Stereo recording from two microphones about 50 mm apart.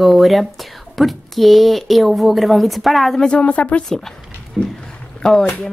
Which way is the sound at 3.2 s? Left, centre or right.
Left.